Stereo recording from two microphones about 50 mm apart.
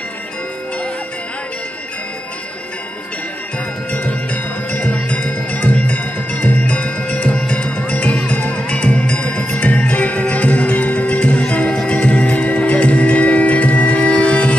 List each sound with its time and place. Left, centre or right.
3.9 s music: left